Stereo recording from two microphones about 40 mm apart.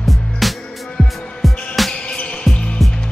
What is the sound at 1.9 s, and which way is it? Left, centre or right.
Music, left.